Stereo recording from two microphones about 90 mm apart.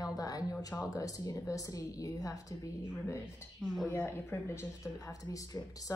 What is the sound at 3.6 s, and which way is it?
Speech, 5° right (ahead or behind).